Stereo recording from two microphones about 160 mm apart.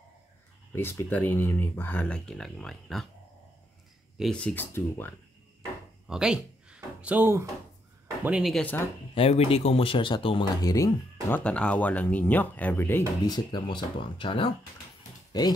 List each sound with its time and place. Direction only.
0.7 s speech: 15° left (ahead or behind)
4.2 s speech: 5° left (ahead or behind)
6.0 s a sound: 5° right (ahead or behind)
8.2 s speech: 5° right (ahead or behind)
9.1 s speech: 35° left (ahead or behind); by 13.0 s 15° left (ahead or behind)
13.2 s speech: 25° left (ahead or behind)